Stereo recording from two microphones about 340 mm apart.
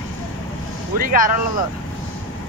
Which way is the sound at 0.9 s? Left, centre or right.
Right.